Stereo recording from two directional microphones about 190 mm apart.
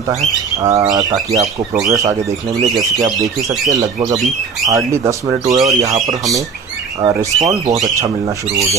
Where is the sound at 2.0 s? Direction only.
20° right (ahead or behind).